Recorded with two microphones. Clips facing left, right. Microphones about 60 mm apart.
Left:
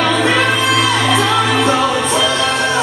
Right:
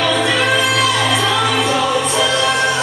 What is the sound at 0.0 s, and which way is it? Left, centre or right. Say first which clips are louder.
Music: left 2 dB; left.